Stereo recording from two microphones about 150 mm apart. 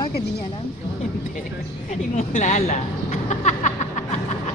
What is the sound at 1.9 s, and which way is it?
Speech, 55° left (ahead or behind).